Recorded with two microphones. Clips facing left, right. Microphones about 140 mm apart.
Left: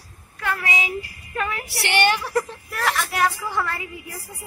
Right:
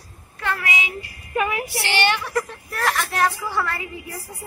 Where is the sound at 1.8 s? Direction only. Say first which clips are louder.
Left 3 dB; 60° left (ahead or behind).